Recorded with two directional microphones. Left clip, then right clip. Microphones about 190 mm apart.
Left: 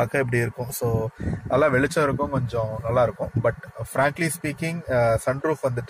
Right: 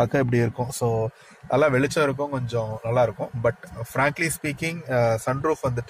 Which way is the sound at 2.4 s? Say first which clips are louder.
Left 1 dB; 5° right (ahead or behind).